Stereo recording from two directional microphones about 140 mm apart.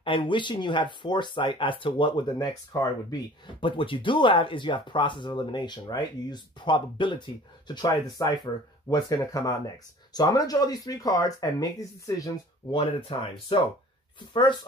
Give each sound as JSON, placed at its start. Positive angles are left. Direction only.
{"t": 0.0, "sound": "speech", "side_deg": 35}
{"t": 3.6, "sound": "speech", "side_deg": 35}
{"t": 12.7, "sound": "speech", "side_deg": 40}